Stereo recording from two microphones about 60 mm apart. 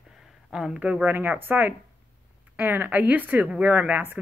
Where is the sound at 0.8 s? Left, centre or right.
Right.